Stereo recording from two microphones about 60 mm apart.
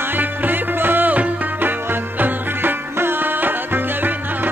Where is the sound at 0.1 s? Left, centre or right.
Right.